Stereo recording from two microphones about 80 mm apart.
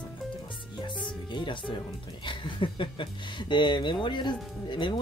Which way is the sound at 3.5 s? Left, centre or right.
Left.